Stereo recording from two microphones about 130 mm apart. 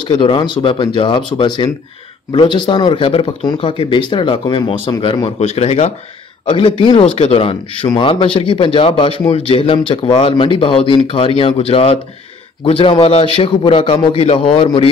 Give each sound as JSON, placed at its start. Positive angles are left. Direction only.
{"t": 0.0, "sound": "a man's voice", "side_deg": 40}
{"t": 6.4, "sound": "a man's voice", "side_deg": 40}